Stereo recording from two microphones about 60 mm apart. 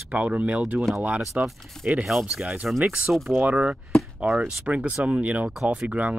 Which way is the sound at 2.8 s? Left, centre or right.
Right.